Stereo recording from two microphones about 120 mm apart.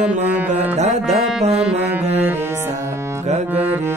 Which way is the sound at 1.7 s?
65° right (ahead or behind).